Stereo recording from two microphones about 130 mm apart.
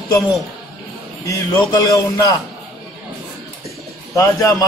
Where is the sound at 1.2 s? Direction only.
25° left (ahead or behind).